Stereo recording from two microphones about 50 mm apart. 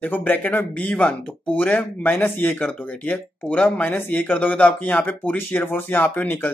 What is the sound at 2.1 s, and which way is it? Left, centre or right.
Speech, left.